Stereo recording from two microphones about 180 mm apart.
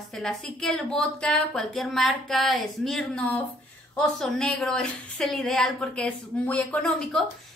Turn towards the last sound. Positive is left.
turn(degrees=5)  # may be behind; listen again after turning